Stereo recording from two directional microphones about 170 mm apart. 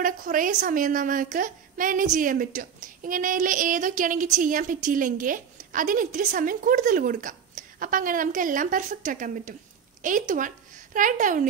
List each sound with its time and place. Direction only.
0.0 s a woman's voice: 55° right (ahead or behind)